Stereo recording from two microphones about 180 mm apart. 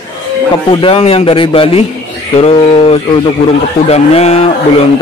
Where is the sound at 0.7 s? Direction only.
30° left (ahead or behind).